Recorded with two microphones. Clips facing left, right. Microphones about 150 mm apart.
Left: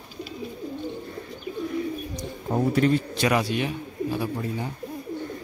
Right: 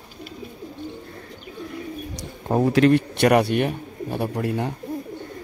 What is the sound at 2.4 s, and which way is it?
A man's voice, 70° right (ahead or behind).